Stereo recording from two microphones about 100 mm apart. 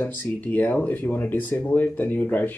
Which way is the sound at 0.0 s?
20° left (ahead or behind).